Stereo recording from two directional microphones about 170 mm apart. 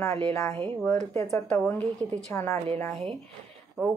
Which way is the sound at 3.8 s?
Centre (ahead or behind).